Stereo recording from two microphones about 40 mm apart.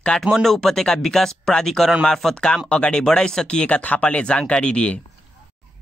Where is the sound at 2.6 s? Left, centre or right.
Left.